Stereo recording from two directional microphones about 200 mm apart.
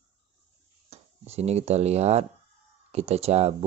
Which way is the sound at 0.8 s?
30° right (ahead or behind).